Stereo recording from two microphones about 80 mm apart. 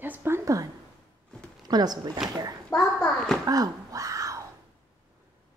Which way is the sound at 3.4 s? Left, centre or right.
Right.